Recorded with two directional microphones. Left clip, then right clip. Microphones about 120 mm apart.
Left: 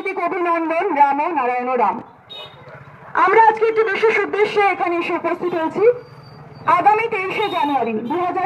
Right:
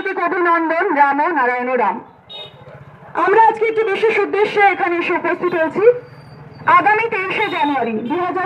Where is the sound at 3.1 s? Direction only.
50° right (ahead or behind).